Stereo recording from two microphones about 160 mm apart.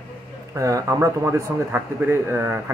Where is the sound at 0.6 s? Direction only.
20° right (ahead or behind).